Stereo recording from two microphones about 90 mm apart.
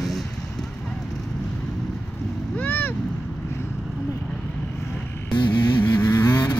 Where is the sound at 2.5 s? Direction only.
20° left (ahead or behind).